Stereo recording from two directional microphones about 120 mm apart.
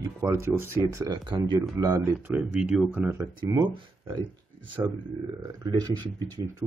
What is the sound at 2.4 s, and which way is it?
Speech, 10° right (ahead or behind).